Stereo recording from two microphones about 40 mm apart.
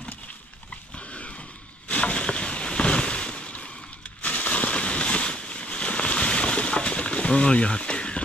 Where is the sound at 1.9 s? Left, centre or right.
Left.